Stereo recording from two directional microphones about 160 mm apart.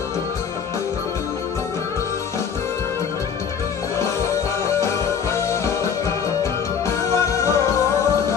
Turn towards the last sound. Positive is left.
turn(degrees=15)  # may be behind; listen again after turning